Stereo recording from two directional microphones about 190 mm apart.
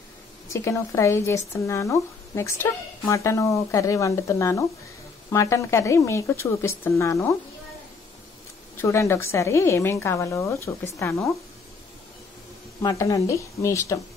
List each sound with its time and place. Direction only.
0.5 s speech: 15° left (ahead or behind)
8.7 s speech: 15° left (ahead or behind)
12.8 s speech: 15° left (ahead or behind)